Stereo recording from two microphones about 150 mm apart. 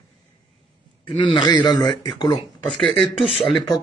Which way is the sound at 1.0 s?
35° left (ahead or behind).